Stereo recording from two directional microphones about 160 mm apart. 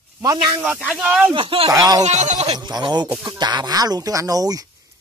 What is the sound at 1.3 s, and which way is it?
Speech, 35° right (ahead or behind).